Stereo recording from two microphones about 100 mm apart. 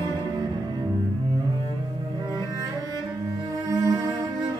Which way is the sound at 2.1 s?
40° right (ahead or behind).